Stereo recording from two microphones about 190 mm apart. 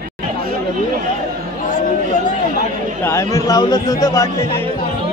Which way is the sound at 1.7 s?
45° left (ahead or behind).